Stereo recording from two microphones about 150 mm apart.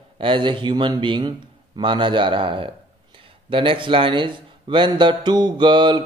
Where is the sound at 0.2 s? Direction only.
35° right (ahead or behind).